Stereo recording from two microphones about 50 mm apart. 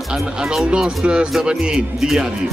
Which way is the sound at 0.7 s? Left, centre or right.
Centre.